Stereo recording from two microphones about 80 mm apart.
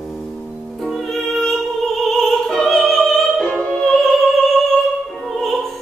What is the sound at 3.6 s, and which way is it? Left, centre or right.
Opera, centre.